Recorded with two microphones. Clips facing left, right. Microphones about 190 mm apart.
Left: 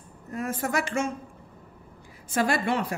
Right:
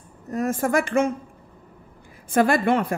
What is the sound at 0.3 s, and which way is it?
Speech, 45° right (ahead or behind).